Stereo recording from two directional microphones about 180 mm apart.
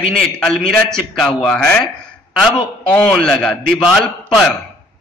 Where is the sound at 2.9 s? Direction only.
5° left (ahead or behind).